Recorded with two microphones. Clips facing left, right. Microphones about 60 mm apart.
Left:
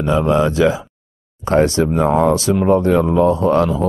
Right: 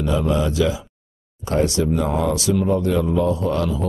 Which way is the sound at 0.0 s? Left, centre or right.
Left.